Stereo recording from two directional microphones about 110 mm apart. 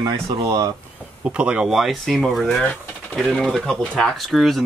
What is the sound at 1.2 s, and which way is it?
Speech, 10° right (ahead or behind).